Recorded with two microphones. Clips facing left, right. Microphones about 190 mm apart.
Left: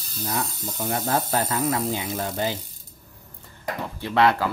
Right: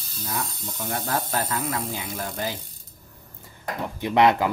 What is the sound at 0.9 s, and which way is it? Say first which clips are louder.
Speech: left 3 dB; 25° left (ahead or behind).